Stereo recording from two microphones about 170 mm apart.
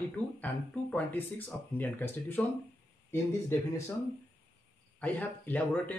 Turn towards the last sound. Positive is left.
turn(degrees=10)  # may be behind; listen again after turning